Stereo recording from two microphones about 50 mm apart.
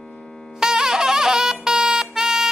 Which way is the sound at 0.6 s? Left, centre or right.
Centre.